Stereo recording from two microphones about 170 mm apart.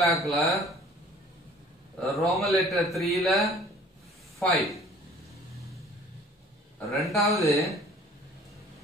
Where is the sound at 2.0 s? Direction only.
Centre (ahead or behind).